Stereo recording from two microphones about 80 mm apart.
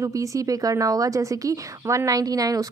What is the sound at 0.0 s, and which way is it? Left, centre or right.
A woman's voice, right.